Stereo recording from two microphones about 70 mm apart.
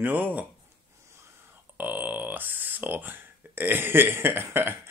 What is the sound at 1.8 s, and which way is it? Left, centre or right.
Speech, right.